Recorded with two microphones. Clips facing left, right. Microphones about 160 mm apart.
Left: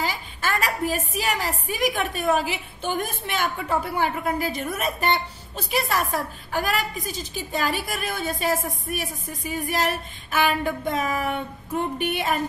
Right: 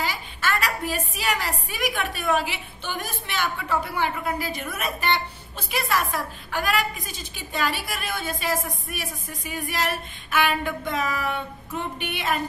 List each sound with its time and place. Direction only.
0.0 s a woman's voice: 40° left (ahead or behind)